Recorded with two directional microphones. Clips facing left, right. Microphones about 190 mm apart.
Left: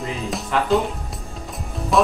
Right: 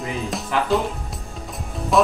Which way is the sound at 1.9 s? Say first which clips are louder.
Even; centre (ahead or behind).